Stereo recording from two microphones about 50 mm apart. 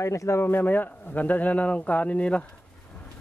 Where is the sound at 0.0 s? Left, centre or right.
Left.